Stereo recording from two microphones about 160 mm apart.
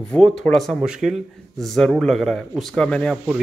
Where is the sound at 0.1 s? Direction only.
5° left (ahead or behind).